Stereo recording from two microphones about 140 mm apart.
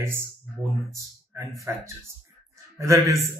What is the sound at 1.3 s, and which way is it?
Speech, 20° right (ahead or behind).